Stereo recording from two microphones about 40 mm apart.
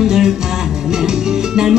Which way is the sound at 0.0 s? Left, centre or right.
Centre.